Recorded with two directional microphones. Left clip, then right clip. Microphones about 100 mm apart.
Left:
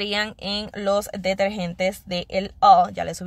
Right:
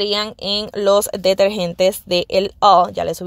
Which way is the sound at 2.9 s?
45° right (ahead or behind).